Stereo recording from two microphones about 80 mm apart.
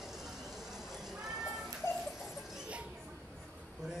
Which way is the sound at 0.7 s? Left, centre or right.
Centre.